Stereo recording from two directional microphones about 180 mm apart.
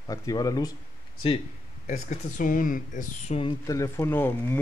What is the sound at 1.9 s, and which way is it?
Speech, 45° left (ahead or behind).